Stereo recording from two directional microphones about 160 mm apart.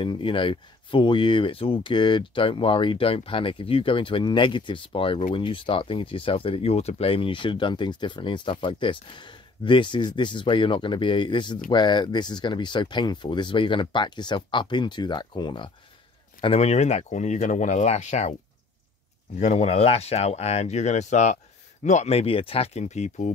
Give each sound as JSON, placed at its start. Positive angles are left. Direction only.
{"t": 0.0, "sound": "speech", "side_deg": 30}
{"t": 19.4, "sound": "speech", "side_deg": 45}